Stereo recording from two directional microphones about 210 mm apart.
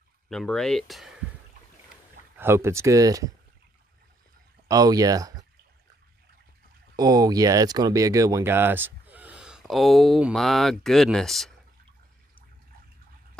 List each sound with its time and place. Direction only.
0.3 s speech: 5° left (ahead or behind)
2.3 s speech: 10° right (ahead or behind)
4.6 s speech: 15° right (ahead or behind)
7.0 s speech: 20° right (ahead or behind); by 11.5 s centre (ahead or behind)